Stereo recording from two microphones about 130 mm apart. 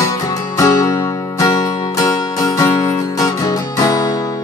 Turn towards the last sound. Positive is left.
turn(degrees=30)  # may be behind; listen again after turning